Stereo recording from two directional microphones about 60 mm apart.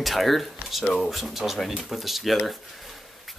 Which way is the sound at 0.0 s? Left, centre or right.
Centre.